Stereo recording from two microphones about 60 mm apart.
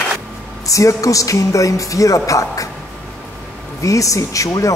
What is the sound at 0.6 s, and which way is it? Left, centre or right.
Speech, left.